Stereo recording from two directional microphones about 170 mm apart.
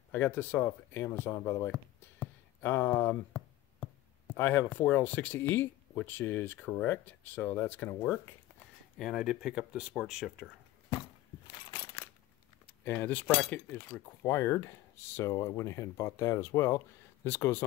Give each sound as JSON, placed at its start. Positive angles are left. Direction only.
{"t": 0.1, "sound": "speech", "side_deg": 10}
{"t": 1.7, "sound": "a sound", "side_deg": 10}
{"t": 4.4, "sound": "speech", "side_deg": 15}
{"t": 12.6, "sound": "speech", "side_deg": 10}